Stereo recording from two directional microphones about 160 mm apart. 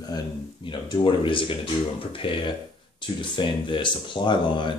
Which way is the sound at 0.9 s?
30° left (ahead or behind).